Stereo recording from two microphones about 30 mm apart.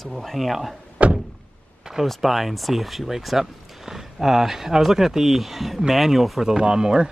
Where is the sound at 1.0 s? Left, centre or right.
Right.